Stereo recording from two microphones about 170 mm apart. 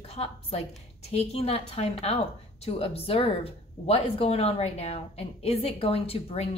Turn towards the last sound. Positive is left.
turn(degrees=35)  # may be behind; listen again after turning